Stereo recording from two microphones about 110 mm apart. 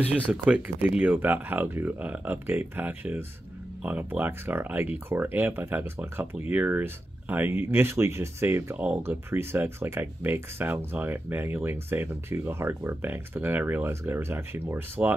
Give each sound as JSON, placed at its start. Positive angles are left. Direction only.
{"t": 0.1, "sound": "speech", "side_deg": -10}